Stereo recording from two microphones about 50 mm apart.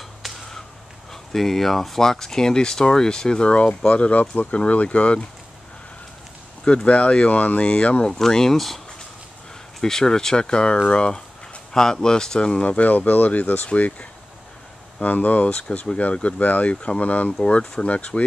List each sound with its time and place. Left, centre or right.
1.1 s speech: centre; by 5.2 s left
6.9 s speech: left
8.1 s speech: centre
12.6 s speech: left
17.4 s speech: centre